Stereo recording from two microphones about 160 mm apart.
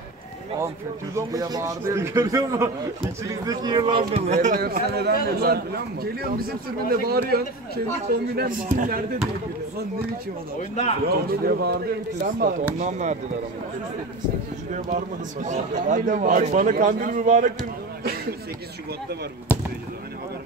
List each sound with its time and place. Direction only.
1.1 s a man's voice: 20° right (ahead or behind)
3.7 s speech: 35° right (ahead or behind)
4.6 s speech: 70° right (ahead or behind)
10.6 s speech: 40° left (ahead or behind)
11.1 s speech: 70° right (ahead or behind)
12.7 s speech: 50° right (ahead or behind)
15.4 s a man's voice: 50° right (ahead or behind)